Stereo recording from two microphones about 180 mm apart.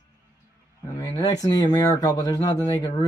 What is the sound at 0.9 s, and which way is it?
Speech, 20° left (ahead or behind).